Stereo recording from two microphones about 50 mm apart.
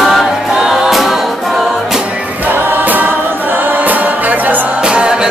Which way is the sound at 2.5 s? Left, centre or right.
Right.